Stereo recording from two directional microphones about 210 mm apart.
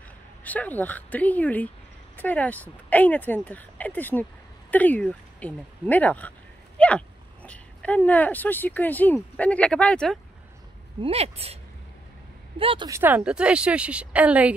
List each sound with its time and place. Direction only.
0.4 s speech: 10° left (ahead or behind)
11.0 s speech: 30° right (ahead or behind)
12.5 s speech: 25° right (ahead or behind); by 14.5 s 5° right (ahead or behind)